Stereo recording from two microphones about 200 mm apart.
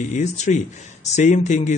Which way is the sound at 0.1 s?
35° left (ahead or behind).